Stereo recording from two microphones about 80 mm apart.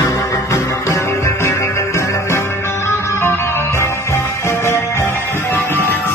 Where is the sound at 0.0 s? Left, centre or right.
Left.